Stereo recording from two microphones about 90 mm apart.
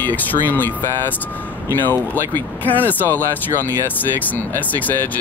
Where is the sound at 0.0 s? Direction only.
20° left (ahead or behind).